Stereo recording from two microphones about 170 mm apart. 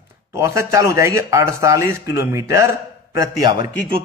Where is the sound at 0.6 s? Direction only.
15° right (ahead or behind).